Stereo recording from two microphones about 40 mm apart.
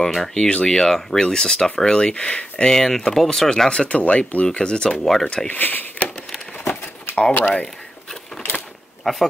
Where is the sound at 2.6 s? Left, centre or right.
Centre.